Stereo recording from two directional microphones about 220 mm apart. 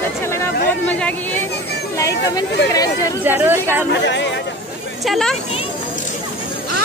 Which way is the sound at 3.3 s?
10° right (ahead or behind).